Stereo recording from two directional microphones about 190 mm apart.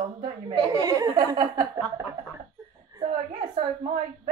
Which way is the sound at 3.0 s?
35° right (ahead or behind).